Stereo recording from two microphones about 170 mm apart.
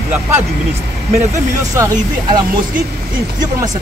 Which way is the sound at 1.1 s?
20° right (ahead or behind).